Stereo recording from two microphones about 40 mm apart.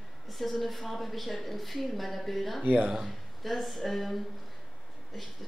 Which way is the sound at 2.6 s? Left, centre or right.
Right.